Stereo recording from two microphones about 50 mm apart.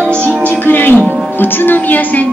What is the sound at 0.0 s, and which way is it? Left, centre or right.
Music, left.